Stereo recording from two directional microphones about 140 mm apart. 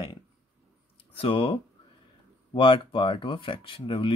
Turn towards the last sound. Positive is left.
turn(degrees=40)  # may be behind; listen again after turning